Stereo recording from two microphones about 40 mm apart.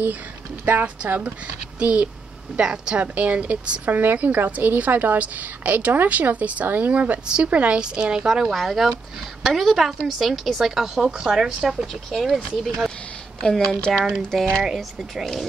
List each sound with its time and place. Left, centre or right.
0.7 s a woman's voice: right
1.8 s a woman's voice: right
3.0 s speech: right
3.9 s a woman's voice: right
5.6 s a woman's voice: right
7.8 s a woman's voice: right
8.3 s a woman's voice: centre
11.1 s a woman's voice: centre
11.9 s a woman's voice: centre
13.5 s speech: centre
14.3 s a woman's voice: centre